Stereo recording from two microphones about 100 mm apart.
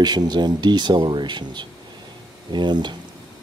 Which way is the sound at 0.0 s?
45° right (ahead or behind).